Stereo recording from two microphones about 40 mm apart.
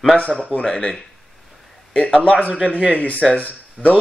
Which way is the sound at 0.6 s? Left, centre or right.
Left.